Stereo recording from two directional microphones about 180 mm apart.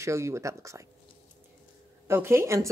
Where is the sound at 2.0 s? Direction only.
15° right (ahead or behind).